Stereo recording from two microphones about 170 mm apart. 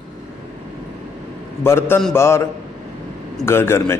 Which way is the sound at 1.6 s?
15° left (ahead or behind).